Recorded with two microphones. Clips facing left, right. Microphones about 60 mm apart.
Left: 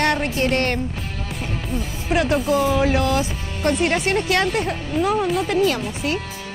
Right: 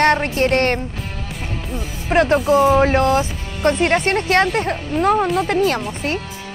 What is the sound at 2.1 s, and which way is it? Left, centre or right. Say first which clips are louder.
Speech: right 5 dB; right.